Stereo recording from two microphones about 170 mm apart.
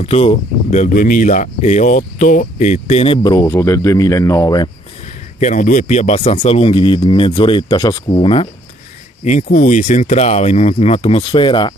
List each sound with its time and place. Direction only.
0.0 s speech: 35° left (ahead or behind); by 4.6 s 20° left (ahead or behind)
5.4 s speech: 45° left (ahead or behind); by 8.5 s 30° left (ahead or behind)
9.2 s speech: 45° left (ahead or behind); by 11.7 s 30° left (ahead or behind)